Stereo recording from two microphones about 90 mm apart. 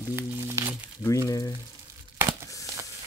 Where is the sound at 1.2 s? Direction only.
40° left (ahead or behind).